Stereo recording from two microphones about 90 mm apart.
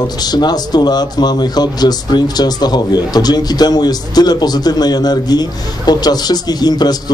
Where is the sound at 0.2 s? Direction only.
50° left (ahead or behind).